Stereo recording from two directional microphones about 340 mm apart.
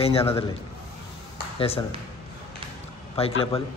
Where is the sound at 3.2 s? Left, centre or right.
Centre.